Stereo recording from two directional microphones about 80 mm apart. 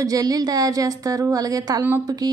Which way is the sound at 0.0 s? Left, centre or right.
Right.